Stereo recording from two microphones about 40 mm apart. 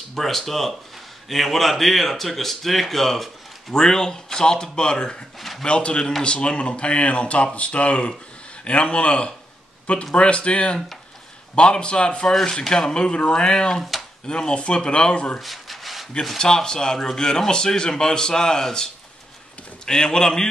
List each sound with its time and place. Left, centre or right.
0.1 s speech: centre
3.7 s speech: centre
15.4 s rub: centre
16.3 s speech: centre
19.9 s speech: centre